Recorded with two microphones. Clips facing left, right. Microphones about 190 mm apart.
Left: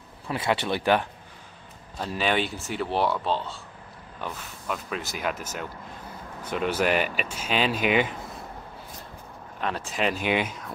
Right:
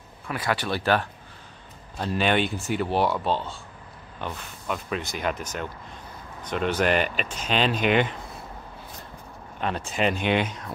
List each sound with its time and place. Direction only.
0.3 s speech: 25° left (ahead or behind)
2.0 s speech: centre (ahead or behind)
9.6 s speech: centre (ahead or behind)